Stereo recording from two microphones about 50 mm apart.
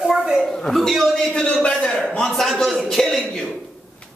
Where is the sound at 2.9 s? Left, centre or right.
Centre.